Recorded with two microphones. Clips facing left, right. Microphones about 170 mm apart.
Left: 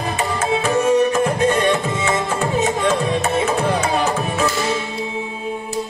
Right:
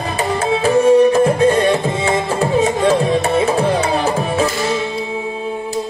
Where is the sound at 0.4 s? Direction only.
30° right (ahead or behind).